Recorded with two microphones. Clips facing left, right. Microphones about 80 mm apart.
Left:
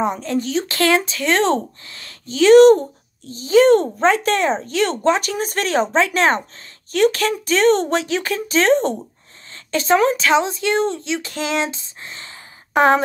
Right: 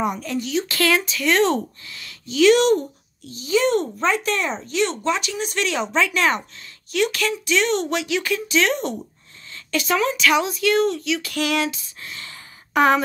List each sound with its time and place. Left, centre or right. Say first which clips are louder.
0.0 s speech: left 4 dB; left